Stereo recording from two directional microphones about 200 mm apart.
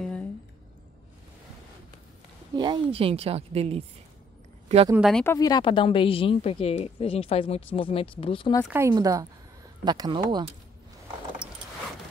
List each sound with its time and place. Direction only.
0.0 s squish: 5° left (ahead or behind)
2.5 s a woman's voice: 20° right (ahead or behind)
5.0 s speech: 5° left (ahead or behind); by 8.6 s 25° left (ahead or behind)
8.7 s a woman's voice: 15° right (ahead or behind)